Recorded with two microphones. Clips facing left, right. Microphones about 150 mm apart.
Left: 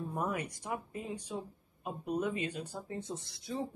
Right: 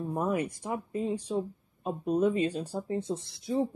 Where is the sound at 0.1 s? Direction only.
25° right (ahead or behind).